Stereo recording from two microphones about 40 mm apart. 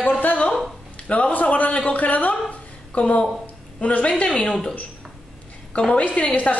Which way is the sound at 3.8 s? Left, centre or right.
Left.